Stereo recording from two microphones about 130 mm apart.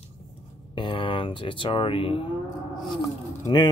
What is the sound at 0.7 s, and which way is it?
Speech, 40° left (ahead or behind).